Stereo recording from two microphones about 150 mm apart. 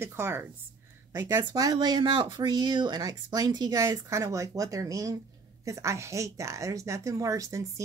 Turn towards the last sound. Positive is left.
turn(degrees=-20)  # may be behind; listen again after turning